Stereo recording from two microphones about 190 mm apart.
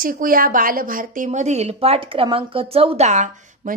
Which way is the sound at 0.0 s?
45° right (ahead or behind).